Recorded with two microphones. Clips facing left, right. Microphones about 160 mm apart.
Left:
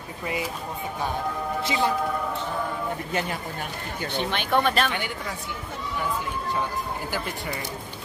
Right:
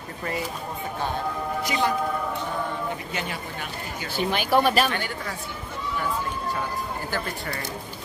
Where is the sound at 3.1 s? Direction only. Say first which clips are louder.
Left 3 dB; 45° left (ahead or behind).